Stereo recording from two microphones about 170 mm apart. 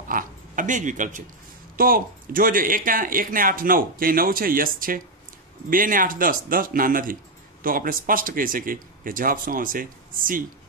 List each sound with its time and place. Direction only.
0.1 s speech: 50° right (ahead or behind)
1.8 s speech: 60° right (ahead or behind)